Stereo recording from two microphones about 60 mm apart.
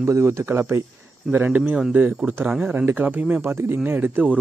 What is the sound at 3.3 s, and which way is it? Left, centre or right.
Speech, right.